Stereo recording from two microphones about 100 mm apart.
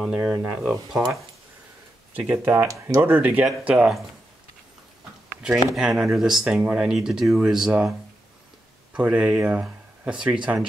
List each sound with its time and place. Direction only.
0.1 s speech: 5° right (ahead or behind)
2.1 s speech: 15° right (ahead or behind)
2.7 s speech: 35° right (ahead or behind)
3.1 s speech: 15° right (ahead or behind)
5.8 s speech: 5° right (ahead or behind)
8.9 s speech: 10° right (ahead or behind)